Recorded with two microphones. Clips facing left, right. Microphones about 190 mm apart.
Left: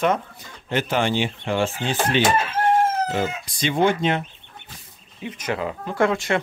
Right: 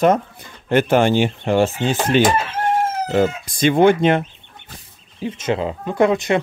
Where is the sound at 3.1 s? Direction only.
50° right (ahead or behind).